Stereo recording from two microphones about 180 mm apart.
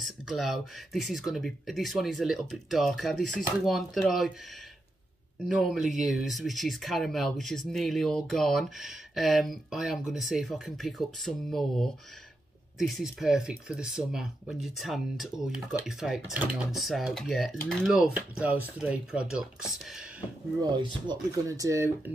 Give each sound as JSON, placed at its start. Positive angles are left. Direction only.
{"t": 0.0, "sound": "speech", "side_deg": 0}
{"t": 5.6, "sound": "speech", "side_deg": -5}
{"t": 20.7, "sound": "speech", "side_deg": -20}